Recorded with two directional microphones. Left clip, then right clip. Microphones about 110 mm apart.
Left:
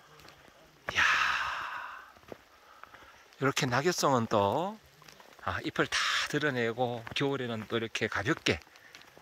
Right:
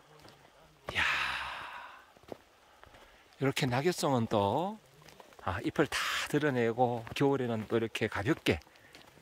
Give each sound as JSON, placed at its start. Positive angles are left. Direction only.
{"t": 0.8, "sound": "sigh", "side_deg": -25}
{"t": 3.3, "sound": "speech", "side_deg": -20}
{"t": 8.5, "sound": "a sound", "side_deg": -30}